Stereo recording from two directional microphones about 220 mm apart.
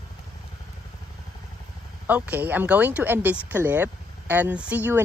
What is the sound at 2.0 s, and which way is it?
Speech, 5° right (ahead or behind).